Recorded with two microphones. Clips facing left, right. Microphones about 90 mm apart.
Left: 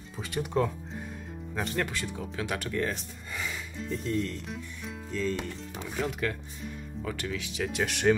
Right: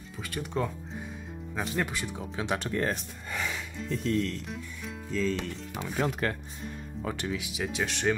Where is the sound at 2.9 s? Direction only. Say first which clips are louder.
Right 3 dB; 75° right (ahead or behind).